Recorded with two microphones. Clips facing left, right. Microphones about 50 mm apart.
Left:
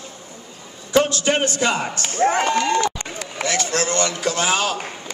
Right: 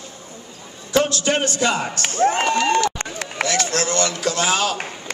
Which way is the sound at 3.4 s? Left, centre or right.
Centre.